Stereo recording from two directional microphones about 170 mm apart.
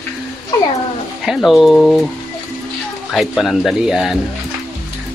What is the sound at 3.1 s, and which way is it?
Speech, centre (ahead or behind).